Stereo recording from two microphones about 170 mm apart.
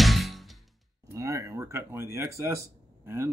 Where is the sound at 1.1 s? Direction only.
20° right (ahead or behind).